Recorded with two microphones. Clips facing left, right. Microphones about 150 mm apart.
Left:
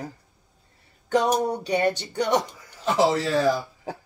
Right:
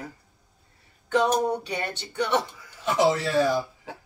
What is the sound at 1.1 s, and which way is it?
Speech, 35° left (ahead or behind).